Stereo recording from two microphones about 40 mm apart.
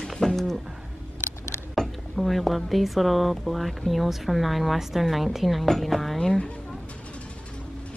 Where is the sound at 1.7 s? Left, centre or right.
Centre.